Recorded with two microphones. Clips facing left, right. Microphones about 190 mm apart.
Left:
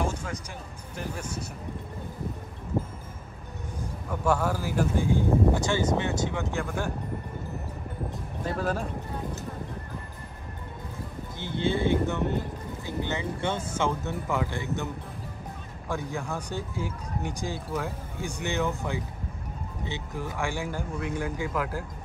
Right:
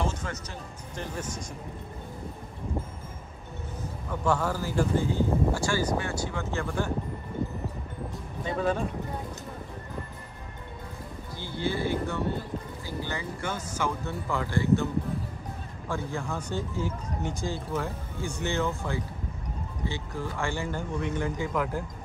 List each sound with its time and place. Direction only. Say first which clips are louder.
0.0 s music: left 1 dB; 10° left (ahead or behind)
0.9 s speech: left 1 dB; 10° left (ahead or behind)
2.7 s music: left 6 dB; 5° left (ahead or behind)
4.1 s speech: left 1 dB; 10° left (ahead or behind)
8.5 s speech: right 2 dB; centre (ahead or behind)
11.3 s speech: left 3 dB; 20° left (ahead or behind)
16.3 s speech: right 1 dB; 15° left (ahead or behind)